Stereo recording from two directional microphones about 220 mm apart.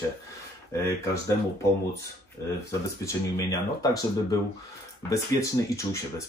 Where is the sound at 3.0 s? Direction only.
15° left (ahead or behind).